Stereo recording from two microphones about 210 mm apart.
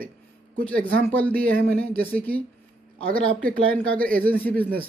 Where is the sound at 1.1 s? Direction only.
10° left (ahead or behind).